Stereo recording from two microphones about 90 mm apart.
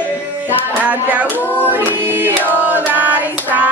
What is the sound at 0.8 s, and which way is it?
Speech, 20° right (ahead or behind).